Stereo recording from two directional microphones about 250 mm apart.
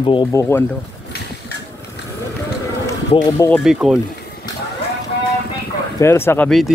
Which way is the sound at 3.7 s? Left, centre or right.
Centre.